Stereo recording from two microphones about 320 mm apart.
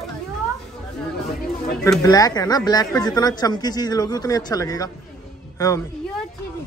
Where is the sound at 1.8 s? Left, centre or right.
Centre.